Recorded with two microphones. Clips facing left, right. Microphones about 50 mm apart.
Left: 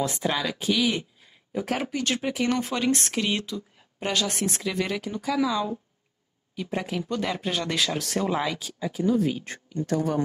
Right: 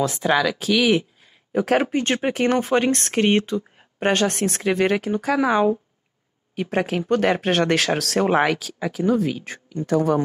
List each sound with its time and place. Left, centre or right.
0.4 s speech: right
1.5 s speech: right
1.9 s speech: right
9.0 s speech: right